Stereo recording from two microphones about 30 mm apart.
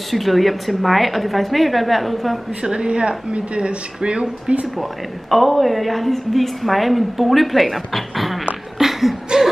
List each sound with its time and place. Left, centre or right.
0.1 s a woman's voice: centre
2.6 s speech: right
5.3 s a woman's voice: centre
8.7 s a sound: centre